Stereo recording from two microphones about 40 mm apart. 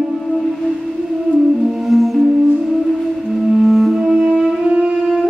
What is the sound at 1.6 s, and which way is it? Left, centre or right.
Music, centre.